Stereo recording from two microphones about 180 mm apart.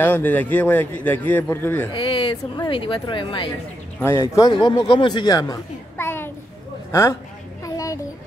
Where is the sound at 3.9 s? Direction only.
15° left (ahead or behind).